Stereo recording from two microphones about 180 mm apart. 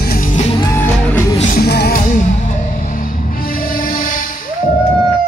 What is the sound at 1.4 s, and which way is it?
Music, 55° left (ahead or behind).